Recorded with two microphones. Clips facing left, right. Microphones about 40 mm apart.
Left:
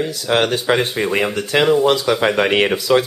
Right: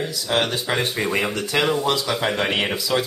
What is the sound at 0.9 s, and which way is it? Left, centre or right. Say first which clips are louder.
Speech: left 4 dB; centre.